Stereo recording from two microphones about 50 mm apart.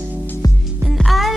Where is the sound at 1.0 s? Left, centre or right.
Centre.